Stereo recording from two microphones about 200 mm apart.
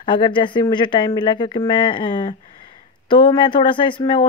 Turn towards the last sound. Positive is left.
turn(degrees=25)  # may be behind; listen again after turning